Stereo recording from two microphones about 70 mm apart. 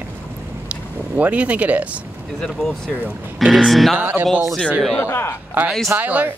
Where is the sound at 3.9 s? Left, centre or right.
Right.